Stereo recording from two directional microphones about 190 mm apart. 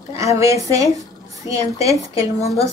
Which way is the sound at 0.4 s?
15° right (ahead or behind).